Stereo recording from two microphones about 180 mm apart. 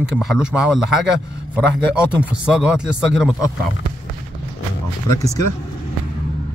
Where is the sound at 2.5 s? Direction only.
5° right (ahead or behind).